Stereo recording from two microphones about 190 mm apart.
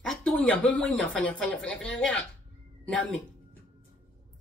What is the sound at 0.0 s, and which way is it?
A woman's voice, 5° left (ahead or behind).